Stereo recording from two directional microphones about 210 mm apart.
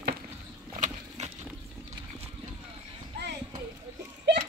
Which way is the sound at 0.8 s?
35° right (ahead or behind).